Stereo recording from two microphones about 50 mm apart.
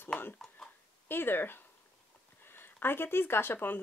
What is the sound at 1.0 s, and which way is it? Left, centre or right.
A woman's voice, left.